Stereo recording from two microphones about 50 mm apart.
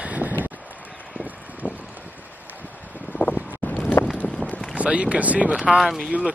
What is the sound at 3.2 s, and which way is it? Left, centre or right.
Wind noise, left.